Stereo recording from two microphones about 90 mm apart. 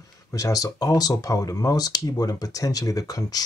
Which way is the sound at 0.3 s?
40° left (ahead or behind).